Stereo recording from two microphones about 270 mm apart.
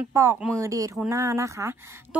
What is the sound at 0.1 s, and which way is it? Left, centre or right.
A woman's voice, centre.